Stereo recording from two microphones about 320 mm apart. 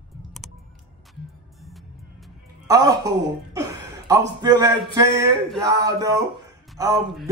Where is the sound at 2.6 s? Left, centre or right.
Centre.